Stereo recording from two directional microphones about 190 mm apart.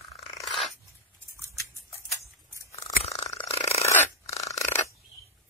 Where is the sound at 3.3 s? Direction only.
35° left (ahead or behind).